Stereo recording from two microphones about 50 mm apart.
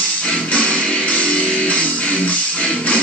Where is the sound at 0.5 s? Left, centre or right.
Left.